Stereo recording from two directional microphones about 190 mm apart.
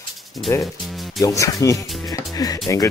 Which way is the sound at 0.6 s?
Centre (ahead or behind).